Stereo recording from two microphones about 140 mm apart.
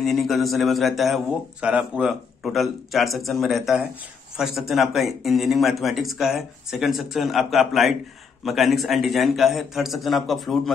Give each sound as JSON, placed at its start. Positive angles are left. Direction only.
{"t": 0.0, "sound": "a man's voice", "side_deg": 0}